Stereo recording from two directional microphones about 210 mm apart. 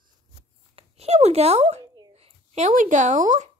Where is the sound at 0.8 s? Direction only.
30° right (ahead or behind).